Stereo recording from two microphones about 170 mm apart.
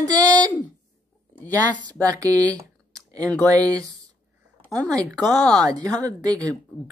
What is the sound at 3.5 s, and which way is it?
Speech, 20° right (ahead or behind).